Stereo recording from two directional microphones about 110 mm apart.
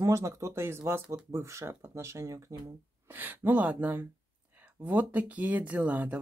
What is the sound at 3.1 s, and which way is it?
Speech, 15° right (ahead or behind).